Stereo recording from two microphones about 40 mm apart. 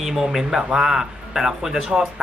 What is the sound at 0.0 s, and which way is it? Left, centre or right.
Speech, centre.